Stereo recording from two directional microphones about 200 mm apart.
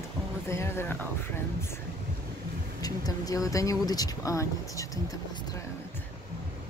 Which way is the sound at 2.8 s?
20° left (ahead or behind).